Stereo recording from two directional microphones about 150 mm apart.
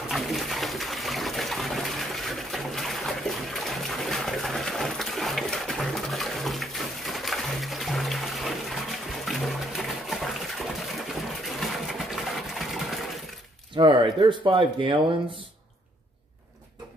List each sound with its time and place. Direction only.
0.1 s water: centre (ahead or behind)
13.7 s speech: 30° right (ahead or behind)